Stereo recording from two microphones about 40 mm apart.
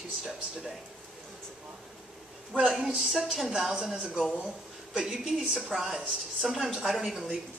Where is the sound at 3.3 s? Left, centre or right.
Centre.